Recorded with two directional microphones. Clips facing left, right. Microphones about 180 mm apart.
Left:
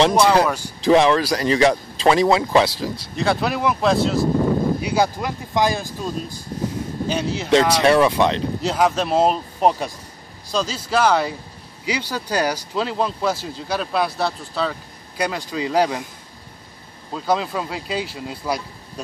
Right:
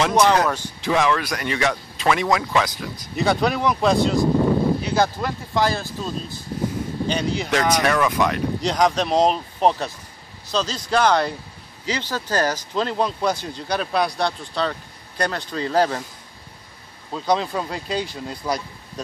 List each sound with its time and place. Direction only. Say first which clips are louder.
0.1 s speech: left 1 dB; 10° left (ahead or behind)
0.8 s speech: left 6 dB; 35° left (ahead or behind)
3.2 s speech: right 1 dB; centre (ahead or behind)
7.4 s speech: left 6 dB; 30° left (ahead or behind)
8.6 s speech: left 1 dB; 5° left (ahead or behind)
17.1 s speech: even; 5° left (ahead or behind)